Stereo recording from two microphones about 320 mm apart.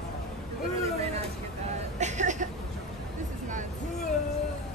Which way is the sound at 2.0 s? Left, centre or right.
Right.